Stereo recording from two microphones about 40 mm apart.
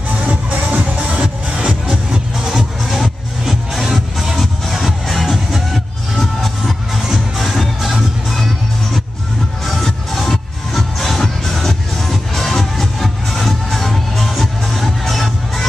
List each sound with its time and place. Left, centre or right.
0.3 s music: right
2.0 s music: centre
2.9 s music: centre
9.7 s music: centre